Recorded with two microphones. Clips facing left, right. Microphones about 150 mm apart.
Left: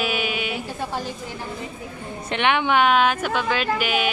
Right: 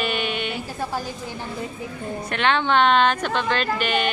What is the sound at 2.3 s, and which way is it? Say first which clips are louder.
A woman's voice: left 1 dB; 15° left (ahead or behind).